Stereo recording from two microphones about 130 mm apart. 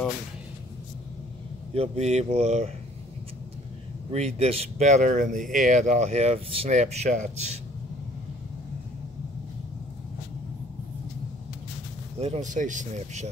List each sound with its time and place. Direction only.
1.7 s speech: 50° right (ahead or behind)
4.1 s speech: 55° right (ahead or behind)
12.2 s speech: 60° right (ahead or behind)